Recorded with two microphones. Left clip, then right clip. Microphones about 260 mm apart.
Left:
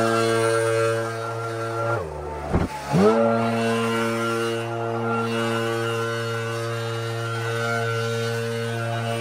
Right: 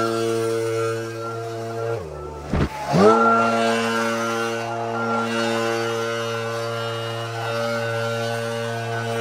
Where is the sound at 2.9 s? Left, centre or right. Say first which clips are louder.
Right 4 dB; right.